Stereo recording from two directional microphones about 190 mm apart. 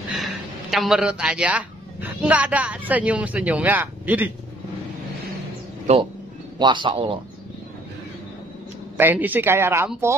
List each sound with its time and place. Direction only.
0.2 s speech: centre (ahead or behind)
5.9 s speech: 35° right (ahead or behind)
6.6 s a man's voice: 25° right (ahead or behind)
8.9 s speech: 10° right (ahead or behind)